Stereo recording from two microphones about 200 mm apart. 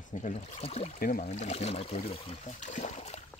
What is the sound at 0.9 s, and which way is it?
Speech, 45° left (ahead or behind).